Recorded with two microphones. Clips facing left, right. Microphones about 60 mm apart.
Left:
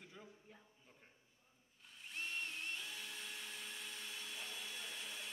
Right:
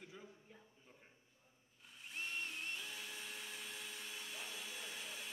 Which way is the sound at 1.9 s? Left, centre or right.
Centre.